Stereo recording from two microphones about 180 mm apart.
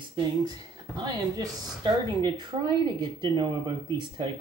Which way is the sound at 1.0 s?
20° right (ahead or behind).